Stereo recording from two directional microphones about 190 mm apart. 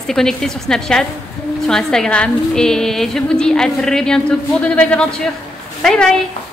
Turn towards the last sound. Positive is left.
turn(degrees=5)  # may be behind; listen again after turning